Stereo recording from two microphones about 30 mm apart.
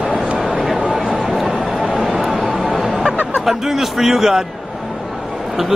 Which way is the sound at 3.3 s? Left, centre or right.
Centre.